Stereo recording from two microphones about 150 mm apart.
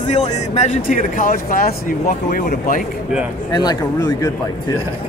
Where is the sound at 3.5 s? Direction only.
25° left (ahead or behind).